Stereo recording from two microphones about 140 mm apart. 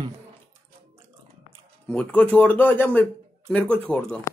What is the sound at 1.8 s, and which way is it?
Speech, 10° left (ahead or behind).